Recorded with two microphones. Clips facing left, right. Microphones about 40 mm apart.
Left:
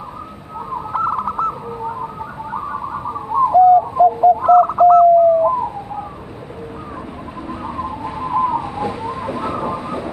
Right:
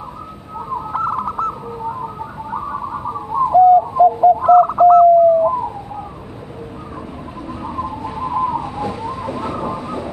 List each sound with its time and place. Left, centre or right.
0.9 s bird: centre
7.6 s bird: centre